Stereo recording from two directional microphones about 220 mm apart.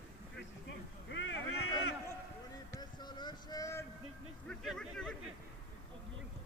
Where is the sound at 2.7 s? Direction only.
20° left (ahead or behind).